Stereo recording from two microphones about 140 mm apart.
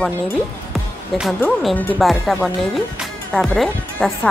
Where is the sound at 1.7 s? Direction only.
10° left (ahead or behind).